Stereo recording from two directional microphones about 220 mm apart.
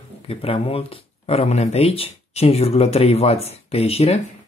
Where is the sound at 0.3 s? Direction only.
25° left (ahead or behind).